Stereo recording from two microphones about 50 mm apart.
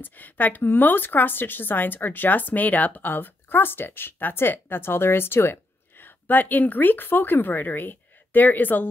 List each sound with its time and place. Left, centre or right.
0.0 s speech: left